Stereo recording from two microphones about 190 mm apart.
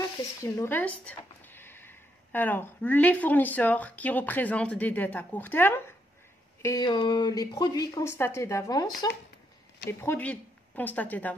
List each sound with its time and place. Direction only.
0.4 s speech: 10° left (ahead or behind)